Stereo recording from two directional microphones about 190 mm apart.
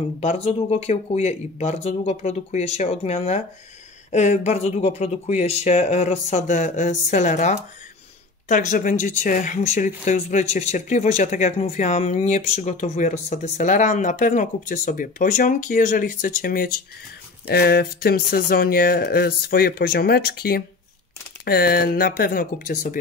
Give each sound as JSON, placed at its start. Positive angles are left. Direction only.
{"t": 0.2, "sound": "speech", "side_deg": 35}